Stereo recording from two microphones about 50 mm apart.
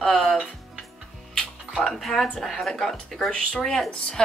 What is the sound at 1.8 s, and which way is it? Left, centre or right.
Speech, centre.